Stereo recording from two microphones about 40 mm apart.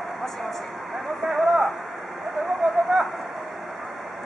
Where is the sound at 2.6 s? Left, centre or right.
Centre.